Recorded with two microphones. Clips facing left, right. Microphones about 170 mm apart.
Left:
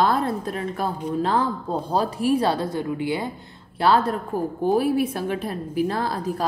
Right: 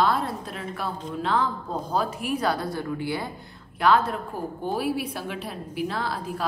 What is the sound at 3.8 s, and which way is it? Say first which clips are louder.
Speech: left 2 dB; 35° left (ahead or behind).